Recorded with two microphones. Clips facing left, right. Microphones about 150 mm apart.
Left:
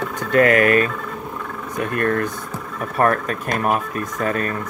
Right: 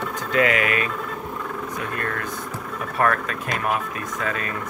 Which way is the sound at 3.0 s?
40° left (ahead or behind).